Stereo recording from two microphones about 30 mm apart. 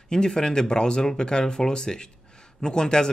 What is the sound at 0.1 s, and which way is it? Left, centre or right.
Speech, left.